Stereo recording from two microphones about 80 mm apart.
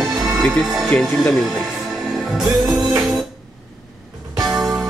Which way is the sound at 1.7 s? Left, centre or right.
Centre.